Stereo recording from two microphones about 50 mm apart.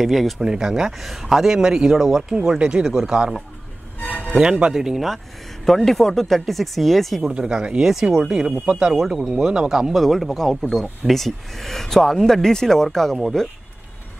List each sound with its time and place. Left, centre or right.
0.0 s speech: centre
0.4 s a man's voice: centre
4.0 s music: left
4.4 s a man's voice: centre
7.2 s speech: centre
7.9 s a man's voice: centre
8.9 s a man's voice: centre
9.9 s speech: centre